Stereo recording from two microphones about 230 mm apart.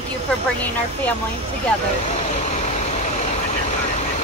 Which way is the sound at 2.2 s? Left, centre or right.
Left.